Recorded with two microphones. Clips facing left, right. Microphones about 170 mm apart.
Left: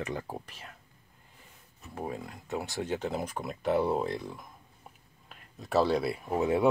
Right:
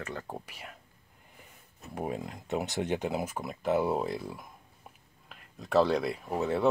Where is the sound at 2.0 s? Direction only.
20° right (ahead or behind).